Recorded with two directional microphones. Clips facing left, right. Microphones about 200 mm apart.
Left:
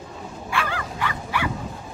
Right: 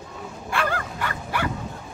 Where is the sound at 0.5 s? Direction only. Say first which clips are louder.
Right 2 dB; 50° right (ahead or behind).